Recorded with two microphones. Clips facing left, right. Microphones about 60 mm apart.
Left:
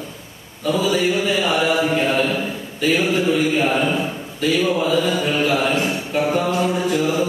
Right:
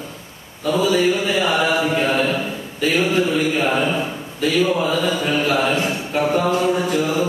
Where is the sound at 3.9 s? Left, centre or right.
Centre.